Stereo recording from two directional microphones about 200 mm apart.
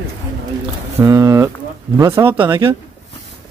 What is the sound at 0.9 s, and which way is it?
Speech, 15° right (ahead or behind).